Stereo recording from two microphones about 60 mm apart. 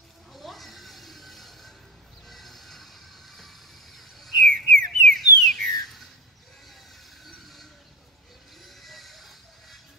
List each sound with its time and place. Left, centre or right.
0.3 s a sound: centre
2.2 s train: centre
3.3 s owl: centre
4.6 s whistle: centre
8.6 s music: centre